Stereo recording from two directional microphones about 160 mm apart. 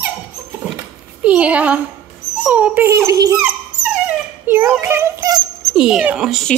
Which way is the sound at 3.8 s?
10° right (ahead or behind).